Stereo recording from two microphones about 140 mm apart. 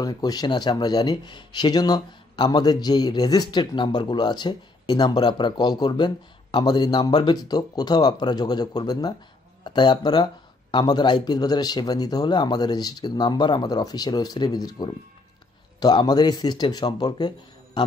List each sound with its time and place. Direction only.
0.0 s speech: 30° left (ahead or behind)